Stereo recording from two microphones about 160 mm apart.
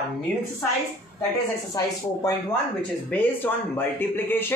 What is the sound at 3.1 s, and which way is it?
Speech, 10° left (ahead or behind).